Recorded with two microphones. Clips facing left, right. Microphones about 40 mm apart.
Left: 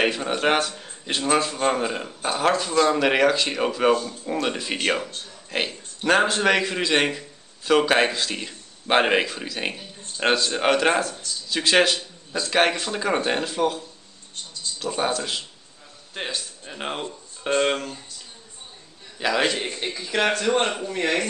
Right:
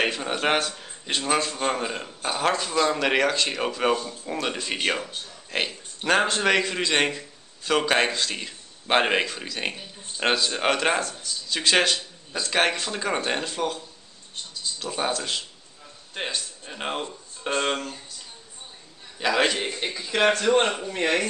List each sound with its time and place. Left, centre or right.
0.0 s a man's voice: centre
19.1 s a man's voice: centre